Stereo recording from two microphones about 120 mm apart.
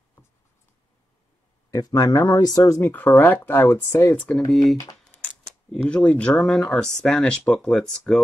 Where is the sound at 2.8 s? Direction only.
15° left (ahead or behind).